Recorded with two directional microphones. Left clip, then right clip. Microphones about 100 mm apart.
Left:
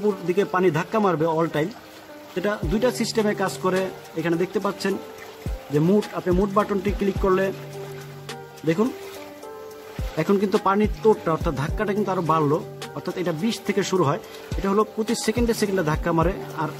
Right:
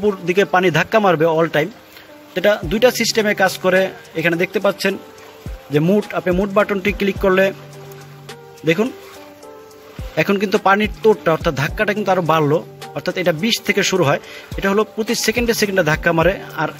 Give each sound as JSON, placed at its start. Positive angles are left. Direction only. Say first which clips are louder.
{"t": 0.0, "sound": "speech", "louder": "right 6 dB", "side_deg": -25}
{"t": 6.2, "sound": "speech", "louder": "right 6 dB", "side_deg": -35}
{"t": 10.1, "sound": "speech", "louder": "right 5 dB", "side_deg": -25}
{"t": 13.7, "sound": "speech", "louder": "right 3 dB", "side_deg": -20}